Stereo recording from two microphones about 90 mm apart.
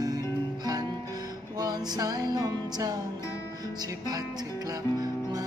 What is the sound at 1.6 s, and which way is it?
Music, 45° right (ahead or behind).